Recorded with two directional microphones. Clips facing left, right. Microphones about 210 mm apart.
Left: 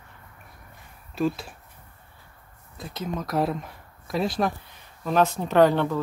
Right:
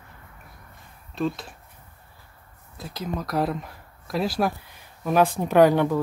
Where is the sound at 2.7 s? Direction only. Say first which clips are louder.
Even; centre (ahead or behind).